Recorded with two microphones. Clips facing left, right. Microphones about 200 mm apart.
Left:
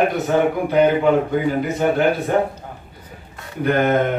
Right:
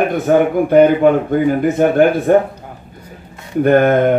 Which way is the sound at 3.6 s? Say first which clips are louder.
Right 6 dB; 50° right (ahead or behind).